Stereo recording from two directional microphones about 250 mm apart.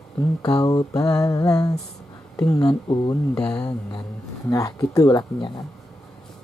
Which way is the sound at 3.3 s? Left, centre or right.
Centre.